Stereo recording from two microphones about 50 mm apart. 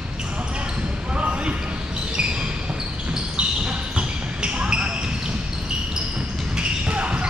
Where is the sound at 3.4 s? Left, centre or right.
Right.